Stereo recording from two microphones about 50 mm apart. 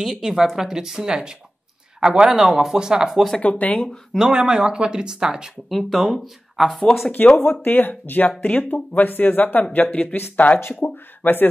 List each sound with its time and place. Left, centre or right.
0.0 s speech: centre
3.3 s speech: left
3.7 s speech: centre
4.2 s speech: centre
5.7 s speech: centre
7.1 s speech: left
7.6 s speech: left
10.6 s speech: left